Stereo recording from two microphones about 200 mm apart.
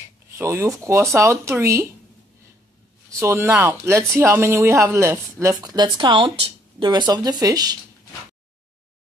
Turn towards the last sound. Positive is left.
turn(degrees=-20)  # may be behind; listen again after turning